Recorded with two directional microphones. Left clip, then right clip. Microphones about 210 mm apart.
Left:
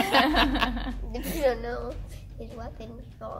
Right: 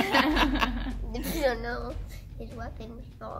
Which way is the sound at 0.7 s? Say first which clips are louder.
Left 2 dB; 55° left (ahead or behind).